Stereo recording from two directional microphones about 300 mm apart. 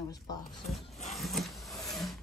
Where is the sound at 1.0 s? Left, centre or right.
Centre.